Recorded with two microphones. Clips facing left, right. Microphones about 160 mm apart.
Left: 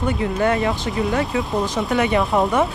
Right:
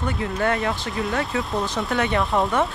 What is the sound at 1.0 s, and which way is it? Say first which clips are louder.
Speech: left 4 dB; centre (ahead or behind).